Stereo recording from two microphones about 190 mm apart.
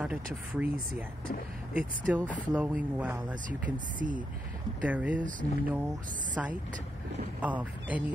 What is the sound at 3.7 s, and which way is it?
Speech, 45° right (ahead or behind).